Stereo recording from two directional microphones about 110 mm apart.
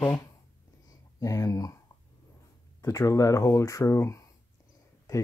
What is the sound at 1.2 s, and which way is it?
Speech, 30° left (ahead or behind).